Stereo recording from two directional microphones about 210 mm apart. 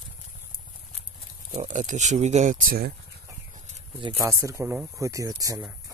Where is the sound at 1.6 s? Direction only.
35° right (ahead or behind).